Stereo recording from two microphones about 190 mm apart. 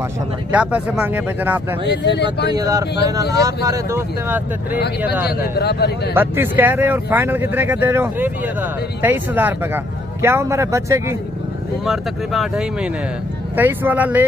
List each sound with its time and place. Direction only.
0.5 s speech: 5° right (ahead or behind)
1.9 s speech: 65° left (ahead or behind)
2.5 s speech: 20° right (ahead or behind)
5.4 s speech: 60° left (ahead or behind)
6.1 s speech: 10° right (ahead or behind)
11.8 s speech: centre (ahead or behind)